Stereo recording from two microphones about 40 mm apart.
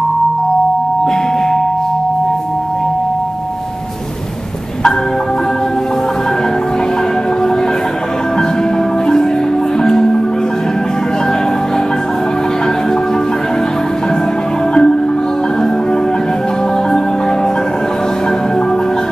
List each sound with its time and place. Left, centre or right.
9.0 s music: centre
14.7 s music: centre